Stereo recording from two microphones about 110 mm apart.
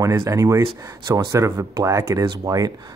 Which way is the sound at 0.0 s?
25° right (ahead or behind).